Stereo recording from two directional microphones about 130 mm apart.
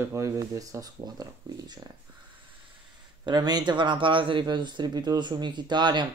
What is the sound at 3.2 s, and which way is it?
Speech, 30° right (ahead or behind).